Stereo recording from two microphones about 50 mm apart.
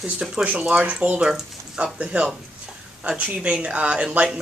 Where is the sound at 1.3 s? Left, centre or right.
Centre.